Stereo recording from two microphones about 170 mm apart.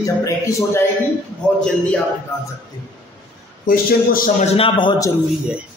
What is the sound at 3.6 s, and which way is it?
Speech, 55° left (ahead or behind).